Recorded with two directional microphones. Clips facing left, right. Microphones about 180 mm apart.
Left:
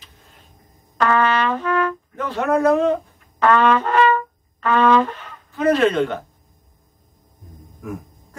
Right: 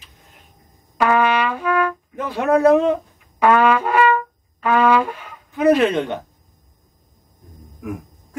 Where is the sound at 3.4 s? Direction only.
10° right (ahead or behind).